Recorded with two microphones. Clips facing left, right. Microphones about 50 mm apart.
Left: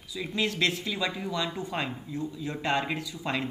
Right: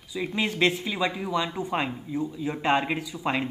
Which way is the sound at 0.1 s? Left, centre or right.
Right.